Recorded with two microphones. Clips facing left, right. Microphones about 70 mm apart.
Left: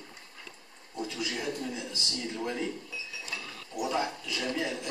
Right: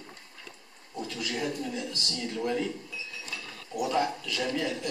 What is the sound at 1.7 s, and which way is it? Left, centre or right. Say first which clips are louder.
Speech: right 3 dB; centre.